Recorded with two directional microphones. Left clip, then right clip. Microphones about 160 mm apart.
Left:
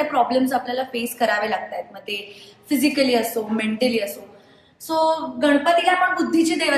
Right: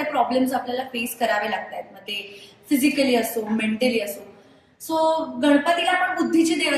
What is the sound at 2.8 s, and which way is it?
A woman's voice, 15° left (ahead or behind).